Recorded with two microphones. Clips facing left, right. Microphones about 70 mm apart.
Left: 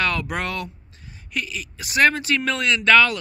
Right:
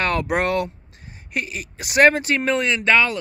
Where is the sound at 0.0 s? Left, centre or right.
Right.